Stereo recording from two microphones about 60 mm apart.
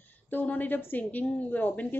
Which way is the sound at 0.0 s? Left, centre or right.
Left.